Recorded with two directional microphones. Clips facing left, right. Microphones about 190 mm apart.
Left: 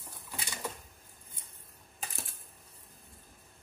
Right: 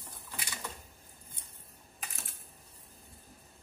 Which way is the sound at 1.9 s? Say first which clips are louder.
Left 4 dB; 30° left (ahead or behind).